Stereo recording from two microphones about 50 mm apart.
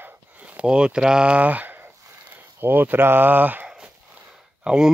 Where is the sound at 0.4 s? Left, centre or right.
Right.